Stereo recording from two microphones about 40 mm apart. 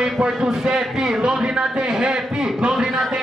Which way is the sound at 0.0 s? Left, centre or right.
Right.